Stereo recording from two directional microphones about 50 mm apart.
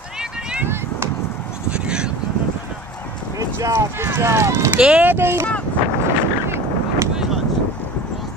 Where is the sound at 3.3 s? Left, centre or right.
Right.